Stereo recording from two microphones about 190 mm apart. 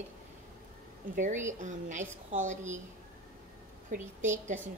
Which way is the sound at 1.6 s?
40° right (ahead or behind).